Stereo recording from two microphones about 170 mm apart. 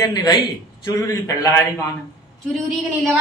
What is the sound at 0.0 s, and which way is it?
A man's voice, 20° left (ahead or behind).